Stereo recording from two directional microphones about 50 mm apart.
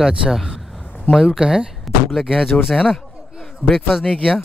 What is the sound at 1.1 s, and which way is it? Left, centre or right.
Speech, centre.